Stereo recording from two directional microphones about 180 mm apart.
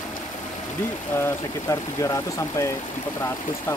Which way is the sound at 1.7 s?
15° left (ahead or behind).